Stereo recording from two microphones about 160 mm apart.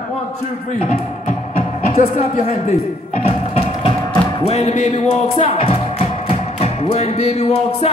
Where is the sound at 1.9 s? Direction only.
40° left (ahead or behind).